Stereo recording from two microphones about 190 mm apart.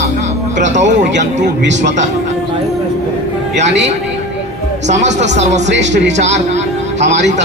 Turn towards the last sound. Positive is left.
turn(degrees=-70)  # may be behind; listen again after turning